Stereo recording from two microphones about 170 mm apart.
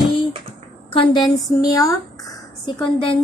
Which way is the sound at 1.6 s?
20° left (ahead or behind).